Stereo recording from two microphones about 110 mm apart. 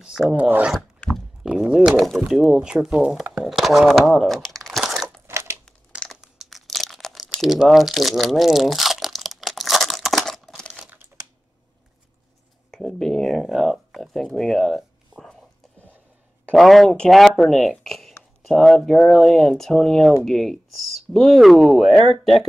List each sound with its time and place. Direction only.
0.0 s speech: 5° right (ahead or behind)
0.4 s filing: 15° right (ahead or behind)
1.4 s speech: 10° right (ahead or behind)
4.1 s crumpling: centre (ahead or behind)
5.2 s crushing: 25° right (ahead or behind)
5.7 s crumpling: 5° left (ahead or behind)
12.7 s speech: 5° left (ahead or behind)
16.5 s speech: centre (ahead or behind)